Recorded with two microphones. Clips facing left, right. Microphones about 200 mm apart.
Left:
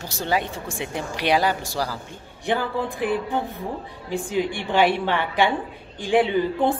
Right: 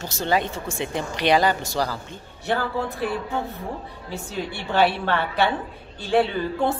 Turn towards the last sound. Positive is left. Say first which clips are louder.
# left 2 dB
turn(degrees=15)  # may be behind; listen again after turning